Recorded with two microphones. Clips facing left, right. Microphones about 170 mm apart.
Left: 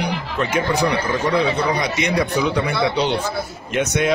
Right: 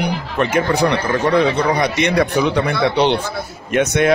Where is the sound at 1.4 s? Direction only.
65° right (ahead or behind).